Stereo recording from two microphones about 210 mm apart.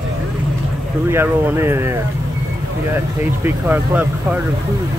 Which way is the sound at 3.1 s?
10° right (ahead or behind).